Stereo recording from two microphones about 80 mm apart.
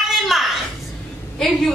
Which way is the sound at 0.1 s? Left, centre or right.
Centre.